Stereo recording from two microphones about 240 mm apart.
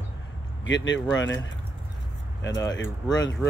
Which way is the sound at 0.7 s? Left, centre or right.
Left.